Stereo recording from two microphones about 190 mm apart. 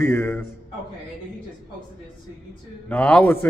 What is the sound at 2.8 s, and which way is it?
Speech, 5° left (ahead or behind).